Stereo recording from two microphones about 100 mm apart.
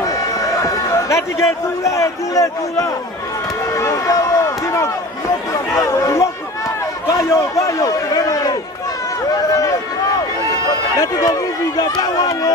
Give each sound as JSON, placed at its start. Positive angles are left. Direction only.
{"t": 0.0, "sound": "a man's voice", "side_deg": 35}
{"t": 3.7, "sound": "run", "side_deg": 30}
{"t": 5.8, "sound": "a man's voice", "side_deg": 35}
{"t": 11.0, "sound": "speech", "side_deg": 35}